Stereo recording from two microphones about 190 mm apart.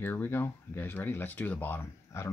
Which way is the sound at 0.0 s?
10° left (ahead or behind).